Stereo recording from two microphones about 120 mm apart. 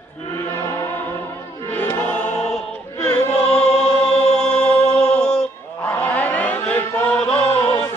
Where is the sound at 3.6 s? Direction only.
60° left (ahead or behind).